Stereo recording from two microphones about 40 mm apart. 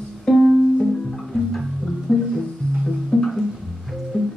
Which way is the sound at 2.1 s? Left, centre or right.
Centre.